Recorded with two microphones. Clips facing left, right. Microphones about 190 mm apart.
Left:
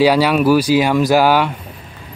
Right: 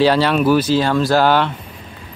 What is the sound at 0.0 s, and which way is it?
Speech, 10° left (ahead or behind).